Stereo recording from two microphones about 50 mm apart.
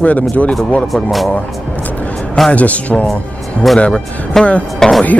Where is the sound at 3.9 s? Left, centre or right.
Centre.